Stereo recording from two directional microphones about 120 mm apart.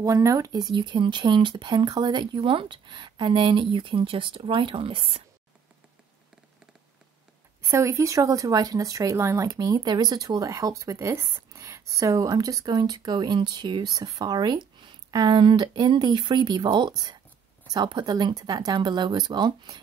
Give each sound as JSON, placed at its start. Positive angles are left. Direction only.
{"t": 0.0, "sound": "speech", "side_deg": -30}
{"t": 7.7, "sound": "speech", "side_deg": -25}